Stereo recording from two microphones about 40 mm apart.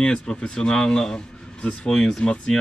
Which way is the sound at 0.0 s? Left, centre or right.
Left.